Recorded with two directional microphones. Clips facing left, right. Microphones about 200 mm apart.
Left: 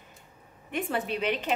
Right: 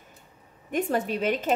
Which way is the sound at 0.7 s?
40° right (ahead or behind).